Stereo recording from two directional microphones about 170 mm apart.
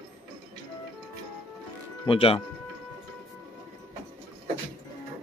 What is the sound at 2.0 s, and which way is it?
Speech, 30° left (ahead or behind).